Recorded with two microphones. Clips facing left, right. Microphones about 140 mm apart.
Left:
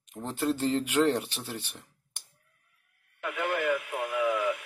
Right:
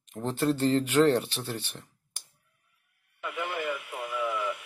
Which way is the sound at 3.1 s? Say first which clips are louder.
Left 3 dB; 60° left (ahead or behind).